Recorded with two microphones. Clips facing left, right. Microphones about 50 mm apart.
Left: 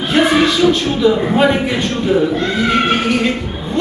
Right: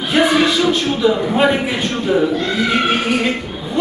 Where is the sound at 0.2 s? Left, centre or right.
Centre.